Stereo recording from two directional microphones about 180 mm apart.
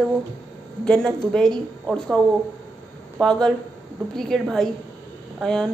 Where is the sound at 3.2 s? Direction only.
5° left (ahead or behind).